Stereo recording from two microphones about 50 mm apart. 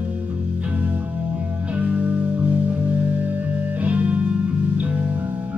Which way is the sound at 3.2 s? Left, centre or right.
Right.